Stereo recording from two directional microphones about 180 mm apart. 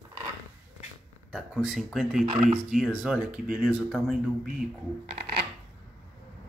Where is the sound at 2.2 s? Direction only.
25° right (ahead or behind).